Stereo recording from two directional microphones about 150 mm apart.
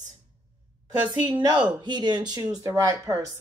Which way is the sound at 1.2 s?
30° right (ahead or behind).